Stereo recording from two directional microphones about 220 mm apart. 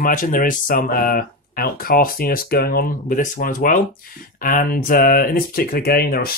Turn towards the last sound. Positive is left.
turn(degrees=45)  # may be behind; listen again after turning